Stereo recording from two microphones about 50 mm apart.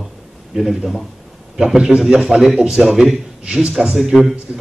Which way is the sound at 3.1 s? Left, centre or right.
Centre.